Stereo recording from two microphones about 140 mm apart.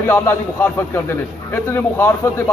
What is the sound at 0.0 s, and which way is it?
A man's voice, 15° left (ahead or behind).